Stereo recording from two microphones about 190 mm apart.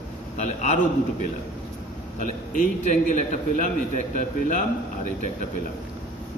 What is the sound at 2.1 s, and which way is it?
A man's voice, 45° left (ahead or behind).